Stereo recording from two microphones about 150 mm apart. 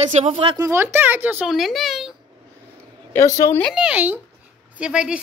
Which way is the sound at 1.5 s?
Centre (ahead or behind).